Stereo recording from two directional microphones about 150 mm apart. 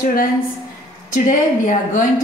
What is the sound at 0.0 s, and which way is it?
A woman's voice, 70° left (ahead or behind).